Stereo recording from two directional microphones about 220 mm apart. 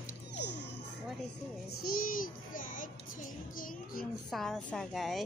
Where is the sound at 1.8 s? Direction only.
40° left (ahead or behind).